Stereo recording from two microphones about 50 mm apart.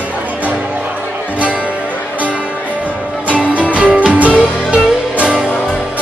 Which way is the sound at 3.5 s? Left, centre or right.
Right.